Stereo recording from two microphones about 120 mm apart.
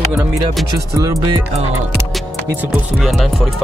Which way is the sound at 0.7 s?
30° right (ahead or behind).